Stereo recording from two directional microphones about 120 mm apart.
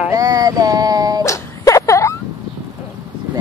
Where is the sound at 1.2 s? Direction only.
25° left (ahead or behind).